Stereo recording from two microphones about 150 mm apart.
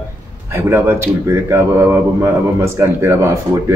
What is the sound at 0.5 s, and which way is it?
Speech, 15° right (ahead or behind).